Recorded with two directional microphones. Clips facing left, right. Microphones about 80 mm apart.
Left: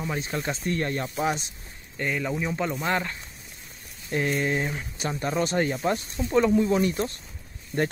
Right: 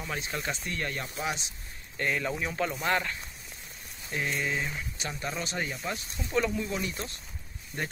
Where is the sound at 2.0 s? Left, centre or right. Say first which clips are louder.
Left 2 dB; centre.